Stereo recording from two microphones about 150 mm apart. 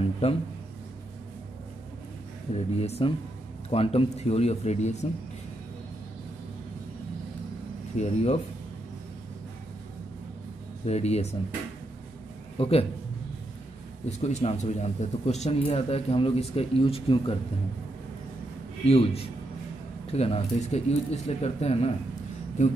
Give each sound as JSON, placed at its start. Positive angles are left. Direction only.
{"t": 0.2, "sound": "a man's voice", "side_deg": 45}
{"t": 2.5, "sound": "a man's voice", "side_deg": 45}
{"t": 8.0, "sound": "a man's voice", "side_deg": 45}
{"t": 10.9, "sound": "a man's voice", "side_deg": 45}
{"t": 12.5, "sound": "a man's voice", "side_deg": 40}
{"t": 14.0, "sound": "a man's voice", "side_deg": 45}
{"t": 18.9, "sound": "a man's voice", "side_deg": 45}